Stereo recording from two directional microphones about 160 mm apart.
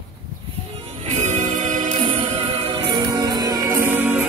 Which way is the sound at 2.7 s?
30° right (ahead or behind).